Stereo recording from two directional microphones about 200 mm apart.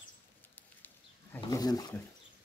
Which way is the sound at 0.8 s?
15° left (ahead or behind).